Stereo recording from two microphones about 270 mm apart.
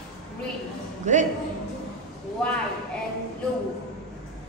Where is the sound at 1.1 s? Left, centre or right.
Right.